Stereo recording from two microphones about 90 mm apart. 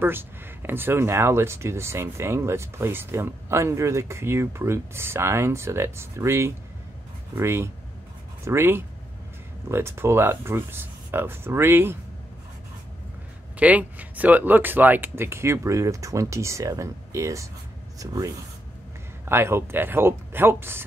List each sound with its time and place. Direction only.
0.0 s speech: 25° right (ahead or behind)
13.6 s speech: 15° right (ahead or behind); by 18.3 s 40° right (ahead or behind)
19.2 s speech: 25° right (ahead or behind)